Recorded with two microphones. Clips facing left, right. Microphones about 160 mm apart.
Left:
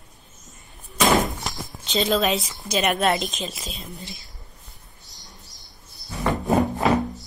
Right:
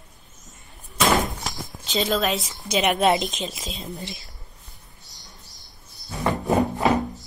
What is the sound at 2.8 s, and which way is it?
Speech, 25° right (ahead or behind).